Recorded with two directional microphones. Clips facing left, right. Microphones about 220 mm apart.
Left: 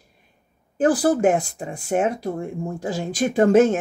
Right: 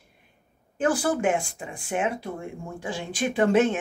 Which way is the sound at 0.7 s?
35° left (ahead or behind).